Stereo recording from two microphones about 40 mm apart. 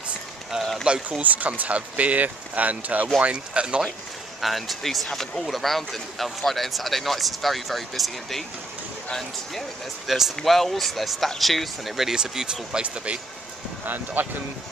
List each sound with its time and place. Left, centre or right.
0.6 s run: centre
1.2 s speech: right
4.4 s speech: centre
10.0 s speech: centre
10.4 s speech: centre
12.0 s speech: centre
12.8 s speech: right
13.8 s speech: right